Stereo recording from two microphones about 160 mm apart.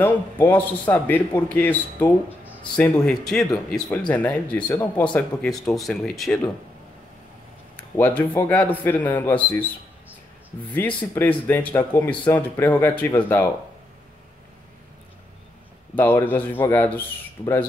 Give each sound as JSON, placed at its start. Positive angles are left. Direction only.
{"t": 0.0, "sound": "speech", "side_deg": 10}
{"t": 7.7, "sound": "speech", "side_deg": 10}
{"t": 10.7, "sound": "speech", "side_deg": 10}
{"t": 15.9, "sound": "speech", "side_deg": 10}